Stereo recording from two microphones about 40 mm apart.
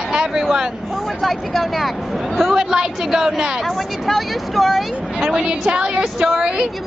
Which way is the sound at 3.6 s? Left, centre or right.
Centre.